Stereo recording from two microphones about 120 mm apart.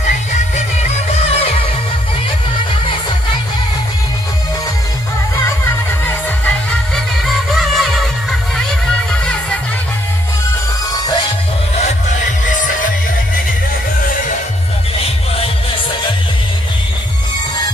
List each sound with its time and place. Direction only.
0.6 s music: 65° left (ahead or behind)
7.5 s music: centre (ahead or behind)
9.2 s music: 10° left (ahead or behind)
12.4 s music: 90° left